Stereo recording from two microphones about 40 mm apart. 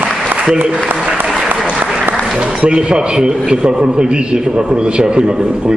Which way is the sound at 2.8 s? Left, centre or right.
Right.